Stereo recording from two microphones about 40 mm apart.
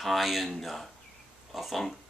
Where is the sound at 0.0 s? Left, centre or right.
Centre.